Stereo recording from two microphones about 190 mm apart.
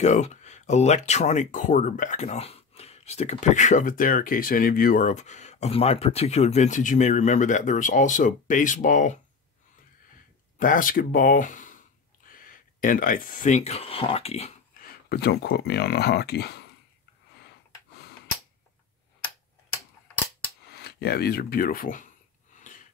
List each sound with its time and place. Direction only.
0.0 s speech: 40° left (ahead or behind)
10.6 s speech: 45° left (ahead or behind)
14.7 s speech: 50° left (ahead or behind)
20.7 s speech: 55° left (ahead or behind)
22.6 s a sound: 45° left (ahead or behind)